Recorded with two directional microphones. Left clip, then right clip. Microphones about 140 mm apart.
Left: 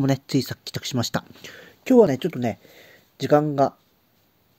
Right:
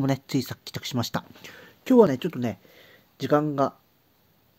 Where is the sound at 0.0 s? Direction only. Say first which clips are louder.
Left 4 dB; 25° left (ahead or behind).